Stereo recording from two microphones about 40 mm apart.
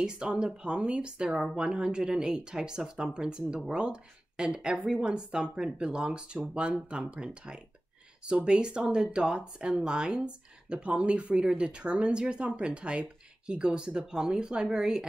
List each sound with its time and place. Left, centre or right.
0.0 s speech: right
1.3 s a woman's voice: centre
1.7 s a woman's voice: right